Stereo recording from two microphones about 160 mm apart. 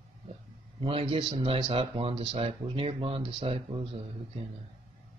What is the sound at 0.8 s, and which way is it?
Speech, 35° right (ahead or behind).